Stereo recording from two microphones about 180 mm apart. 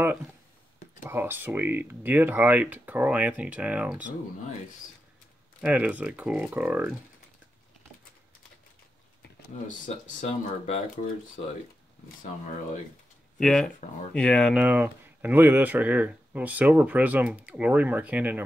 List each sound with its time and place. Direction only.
1.0 s speech: 10° right (ahead or behind)
5.6 s speech: 5° right (ahead or behind)
9.7 s speech: 45° left (ahead or behind)
12.2 s speech: 45° left (ahead or behind)
13.4 s speech: 5° left (ahead or behind)